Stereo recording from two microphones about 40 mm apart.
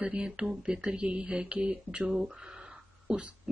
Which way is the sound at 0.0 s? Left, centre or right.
Right.